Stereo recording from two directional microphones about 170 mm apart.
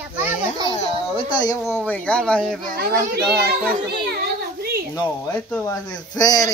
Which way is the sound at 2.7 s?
65° right (ahead or behind).